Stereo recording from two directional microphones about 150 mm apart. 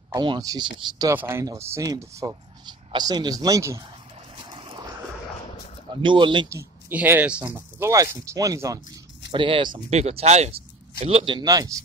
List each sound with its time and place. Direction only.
0.1 s speech: 30° right (ahead or behind)
4.5 s a sound: 35° right (ahead or behind)
6.0 s speech: 35° right (ahead or behind)
6.5 s speech: 15° right (ahead or behind)
9.3 s speech: 35° right (ahead or behind)
9.8 s speech: 45° right (ahead or behind); by 11.8 s 25° right (ahead or behind)